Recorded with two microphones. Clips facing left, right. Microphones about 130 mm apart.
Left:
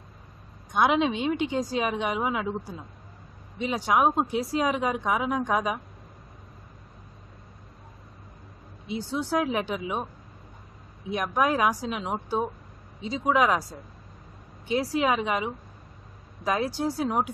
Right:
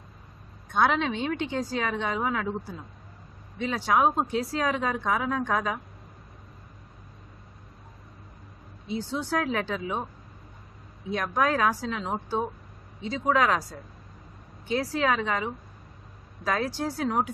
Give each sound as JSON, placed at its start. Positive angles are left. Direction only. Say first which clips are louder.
{"t": 0.7, "sound": "speech", "louder": "left 2 dB", "side_deg": 15}
{"t": 8.8, "sound": "speech", "louder": "left 1 dB", "side_deg": 15}
{"t": 11.1, "sound": "speech", "louder": "left 1 dB", "side_deg": 10}